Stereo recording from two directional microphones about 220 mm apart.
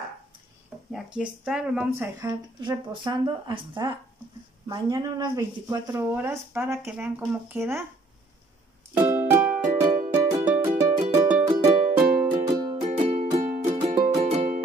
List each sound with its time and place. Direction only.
0.9 s speech: 5° right (ahead or behind)
2.1 s speech: 15° right (ahead or behind)
8.9 s music: 10° right (ahead or behind)
13.1 s music: 35° right (ahead or behind)